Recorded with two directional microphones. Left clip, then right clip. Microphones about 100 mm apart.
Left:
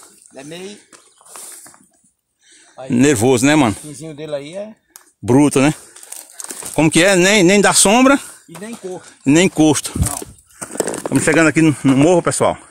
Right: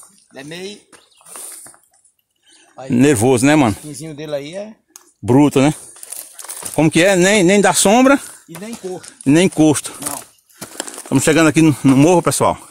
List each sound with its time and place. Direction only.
0.3 s speech: 5° right (ahead or behind)
1.3 s a sound: 40° left (ahead or behind)
2.7 s speech: 5° left (ahead or behind)
5.2 s speech: 15° left (ahead or behind)
6.7 s speech: 35° left (ahead or behind)
8.6 s speech: 5° left (ahead or behind)
9.3 s speech: 20° left (ahead or behind)
11.2 s speech: 10° right (ahead or behind)
12.1 s speech: centre (ahead or behind)